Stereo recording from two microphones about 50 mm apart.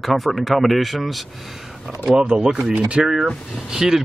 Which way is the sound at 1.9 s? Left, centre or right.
Centre.